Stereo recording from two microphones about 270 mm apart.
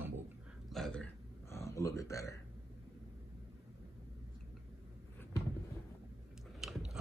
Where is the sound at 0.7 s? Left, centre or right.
Centre.